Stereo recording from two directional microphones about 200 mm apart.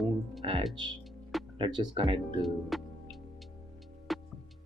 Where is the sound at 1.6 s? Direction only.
20° right (ahead or behind).